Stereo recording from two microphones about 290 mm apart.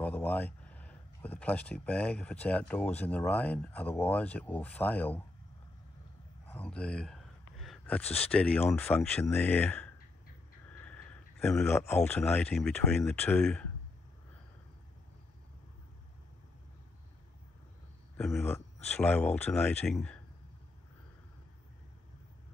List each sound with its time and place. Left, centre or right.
0.0 s speech: centre
6.5 s a sound: centre
8.0 s speech: left
8.3 s speech: centre
10.9 s speech: centre
18.1 s speech: centre